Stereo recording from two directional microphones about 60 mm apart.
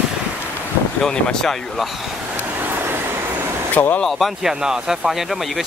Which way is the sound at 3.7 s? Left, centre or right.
Left.